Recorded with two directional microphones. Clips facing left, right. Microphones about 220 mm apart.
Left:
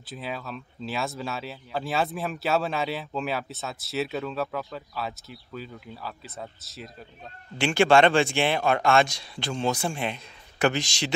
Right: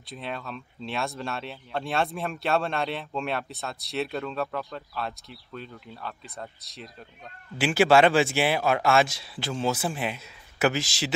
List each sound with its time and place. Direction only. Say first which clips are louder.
0.0 s speech: left 1 dB; centre (ahead or behind)